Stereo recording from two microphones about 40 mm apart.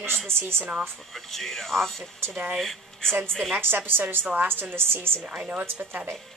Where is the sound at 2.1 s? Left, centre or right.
Right.